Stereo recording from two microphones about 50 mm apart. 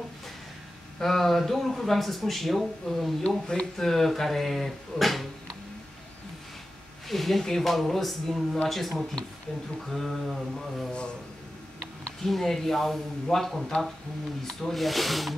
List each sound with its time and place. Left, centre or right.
0.9 s speech: centre
3.3 s speech: centre
3.7 s speech: centre
7.1 s speech: centre
9.8 s a sound: centre
12.2 s speech: centre